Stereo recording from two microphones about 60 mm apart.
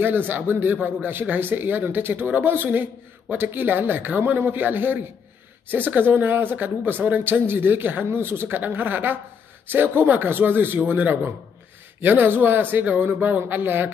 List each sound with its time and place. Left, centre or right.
0.0 s speech: right